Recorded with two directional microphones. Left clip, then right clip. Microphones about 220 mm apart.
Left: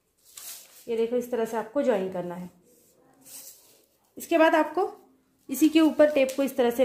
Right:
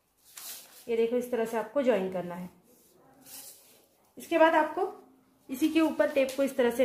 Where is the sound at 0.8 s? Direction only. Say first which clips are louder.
Left 1 dB; 30° left (ahead or behind).